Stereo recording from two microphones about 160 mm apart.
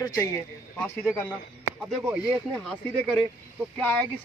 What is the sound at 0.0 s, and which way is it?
Speech, 20° left (ahead or behind).